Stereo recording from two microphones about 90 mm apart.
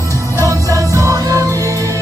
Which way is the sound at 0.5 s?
35° right (ahead or behind).